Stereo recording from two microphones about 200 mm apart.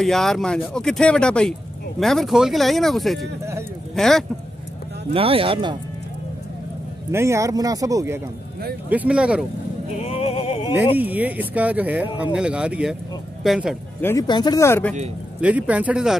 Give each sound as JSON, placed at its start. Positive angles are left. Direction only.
{"t": 0.0, "sound": "speech", "side_deg": 0}
{"t": 5.1, "sound": "speech", "side_deg": -25}
{"t": 7.1, "sound": "speech", "side_deg": -15}
{"t": 9.9, "sound": "music", "side_deg": 30}
{"t": 11.0, "sound": "speech", "side_deg": -10}
{"t": 14.0, "sound": "speech", "side_deg": 20}
{"t": 15.4, "sound": "speech", "side_deg": -5}